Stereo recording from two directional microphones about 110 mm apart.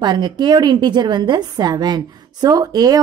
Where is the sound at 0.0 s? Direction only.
40° right (ahead or behind).